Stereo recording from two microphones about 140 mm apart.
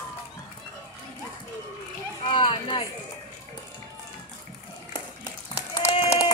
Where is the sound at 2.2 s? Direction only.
35° left (ahead or behind).